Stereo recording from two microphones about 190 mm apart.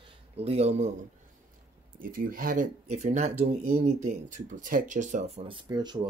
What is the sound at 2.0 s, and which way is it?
Speech, 50° right (ahead or behind).